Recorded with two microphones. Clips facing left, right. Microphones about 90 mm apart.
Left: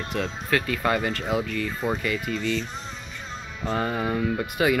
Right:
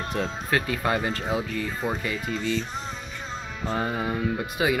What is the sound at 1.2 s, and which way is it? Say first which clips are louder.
Speech: left 1 dB; 5° right (ahead or behind).